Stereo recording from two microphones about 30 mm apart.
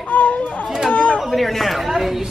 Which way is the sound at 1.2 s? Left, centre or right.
Centre.